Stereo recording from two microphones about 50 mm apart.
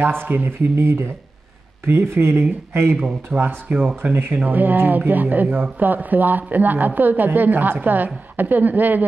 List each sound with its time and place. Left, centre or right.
0.0 s speech: right